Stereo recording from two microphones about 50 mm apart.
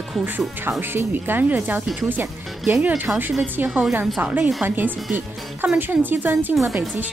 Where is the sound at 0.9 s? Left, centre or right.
Right.